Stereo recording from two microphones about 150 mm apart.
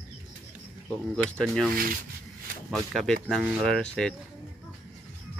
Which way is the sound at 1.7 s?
70° right (ahead or behind).